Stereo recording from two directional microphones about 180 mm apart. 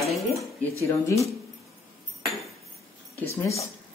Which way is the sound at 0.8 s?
15° left (ahead or behind).